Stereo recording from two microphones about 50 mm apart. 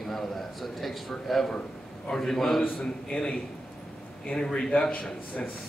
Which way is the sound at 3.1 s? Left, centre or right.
Left.